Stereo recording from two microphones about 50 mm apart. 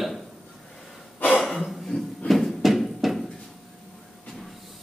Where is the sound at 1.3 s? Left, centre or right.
Centre.